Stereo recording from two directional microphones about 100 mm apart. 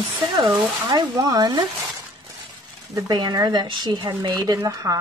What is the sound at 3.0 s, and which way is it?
Speech, 45° right (ahead or behind).